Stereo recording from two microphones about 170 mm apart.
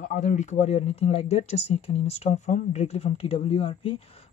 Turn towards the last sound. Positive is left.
turn(degrees=30)  # may be behind; listen again after turning